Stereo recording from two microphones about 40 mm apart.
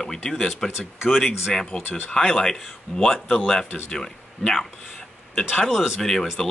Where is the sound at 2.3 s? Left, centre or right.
Centre.